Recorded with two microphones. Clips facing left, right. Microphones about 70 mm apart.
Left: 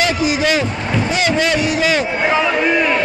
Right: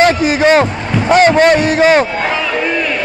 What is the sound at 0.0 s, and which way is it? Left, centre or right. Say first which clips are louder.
A man's voice: right 6 dB; right.